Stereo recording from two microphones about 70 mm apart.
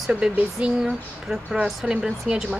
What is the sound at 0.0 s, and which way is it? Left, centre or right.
A woman's voice, centre.